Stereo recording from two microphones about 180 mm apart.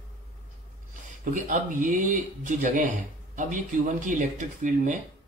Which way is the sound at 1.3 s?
45° right (ahead or behind).